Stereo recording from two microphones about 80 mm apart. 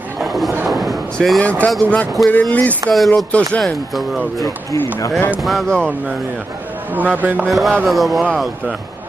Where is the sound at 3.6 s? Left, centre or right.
Centre.